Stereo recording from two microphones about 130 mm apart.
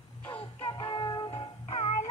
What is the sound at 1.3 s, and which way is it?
Music, 45° left (ahead or behind).